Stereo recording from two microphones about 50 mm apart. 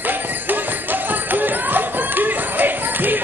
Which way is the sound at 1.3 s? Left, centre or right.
Right.